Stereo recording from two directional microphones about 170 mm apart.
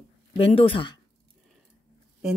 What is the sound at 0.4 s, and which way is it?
Speech, 35° left (ahead or behind).